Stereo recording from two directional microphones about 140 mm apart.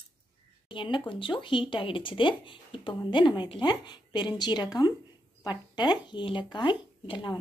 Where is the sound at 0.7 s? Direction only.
35° left (ahead or behind).